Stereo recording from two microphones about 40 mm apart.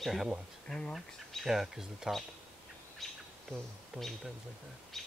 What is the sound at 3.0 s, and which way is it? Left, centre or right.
Bird, centre.